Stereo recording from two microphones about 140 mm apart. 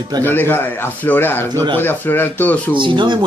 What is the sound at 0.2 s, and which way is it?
Speech, 15° left (ahead or behind).